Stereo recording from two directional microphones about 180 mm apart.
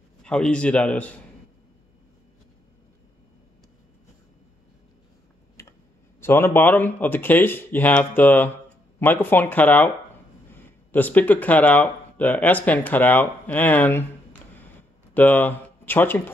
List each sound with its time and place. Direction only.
0.2 s speech: 5° left (ahead or behind)
5.6 s tick: 15° left (ahead or behind)
6.2 s speech: 10° left (ahead or behind)
14.5 s a sound: 10° left (ahead or behind)